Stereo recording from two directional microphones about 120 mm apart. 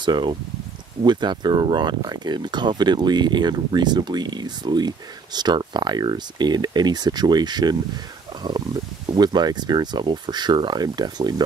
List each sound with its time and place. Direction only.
0.0 s speech: 40° right (ahead or behind)
9.1 s speech: 35° right (ahead or behind)